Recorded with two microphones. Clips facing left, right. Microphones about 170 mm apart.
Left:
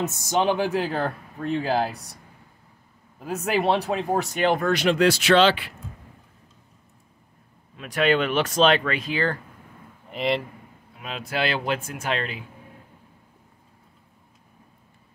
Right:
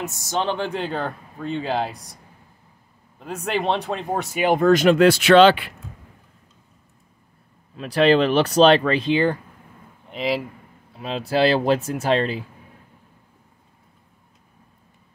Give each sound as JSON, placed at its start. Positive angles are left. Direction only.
{"t": 0.1, "sound": "speech", "side_deg": 15}
{"t": 3.2, "sound": "speech", "side_deg": 5}
{"t": 4.6, "sound": "speech", "side_deg": -50}
{"t": 7.7, "sound": "speech", "side_deg": -35}
{"t": 10.0, "sound": "speech", "side_deg": 0}
{"t": 11.0, "sound": "speech", "side_deg": -30}